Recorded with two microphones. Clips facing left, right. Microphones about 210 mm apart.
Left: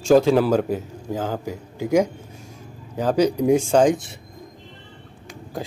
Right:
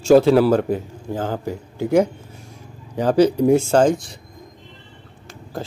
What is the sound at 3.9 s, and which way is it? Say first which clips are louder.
Speech: right 1 dB; 25° left (ahead or behind).